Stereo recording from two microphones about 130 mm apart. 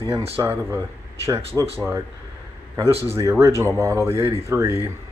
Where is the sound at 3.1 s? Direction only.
20° right (ahead or behind).